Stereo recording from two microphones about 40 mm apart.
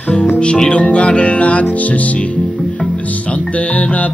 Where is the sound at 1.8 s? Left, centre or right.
Left.